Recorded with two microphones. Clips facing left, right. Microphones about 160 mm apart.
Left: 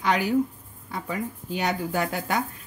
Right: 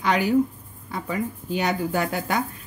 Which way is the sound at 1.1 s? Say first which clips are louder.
Right 4 dB; 90° right.